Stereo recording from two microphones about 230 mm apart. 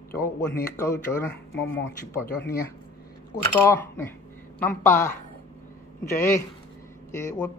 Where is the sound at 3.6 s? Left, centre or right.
Centre.